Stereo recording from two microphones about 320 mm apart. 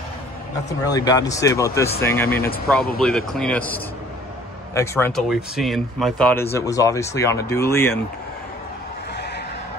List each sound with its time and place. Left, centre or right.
0.7 s speech: centre
9.1 s neigh: left